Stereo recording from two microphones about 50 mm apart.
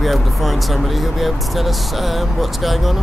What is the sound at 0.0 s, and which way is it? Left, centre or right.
Speech, centre.